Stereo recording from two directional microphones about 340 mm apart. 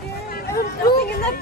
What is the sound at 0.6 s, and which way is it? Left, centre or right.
Speech, left.